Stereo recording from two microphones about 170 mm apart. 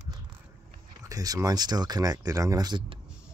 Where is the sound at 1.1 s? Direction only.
20° right (ahead or behind).